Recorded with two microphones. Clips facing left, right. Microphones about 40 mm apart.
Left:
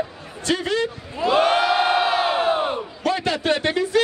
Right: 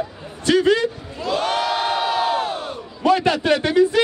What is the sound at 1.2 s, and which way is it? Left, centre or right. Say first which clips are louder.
Crowd: left 4 dB; left.